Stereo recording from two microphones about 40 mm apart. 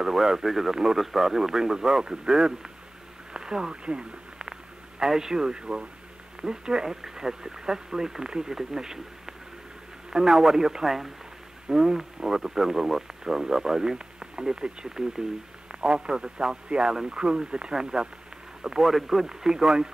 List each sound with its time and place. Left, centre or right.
0.0 s speech: centre